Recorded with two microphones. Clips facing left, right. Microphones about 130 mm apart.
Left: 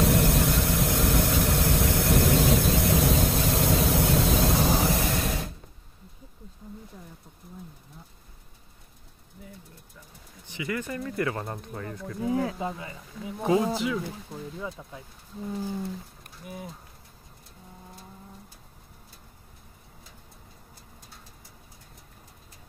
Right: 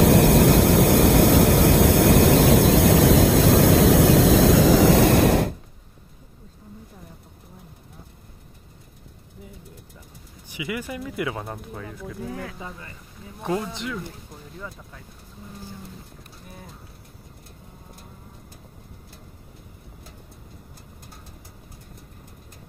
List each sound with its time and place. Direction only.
0.0 s vehicle: 85° right
10.5 s speech: 10° right (ahead or behind)
12.3 s speech: 20° left (ahead or behind)
13.4 s speech: centre (ahead or behind)
14.6 s speech: 15° left (ahead or behind)